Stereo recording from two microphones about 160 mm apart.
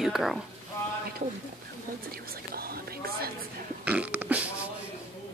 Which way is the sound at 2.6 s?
70° right (ahead or behind).